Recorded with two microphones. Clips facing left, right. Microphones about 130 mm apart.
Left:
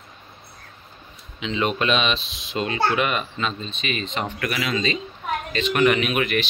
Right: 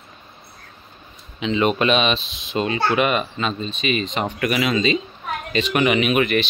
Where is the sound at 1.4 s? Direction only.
5° right (ahead or behind).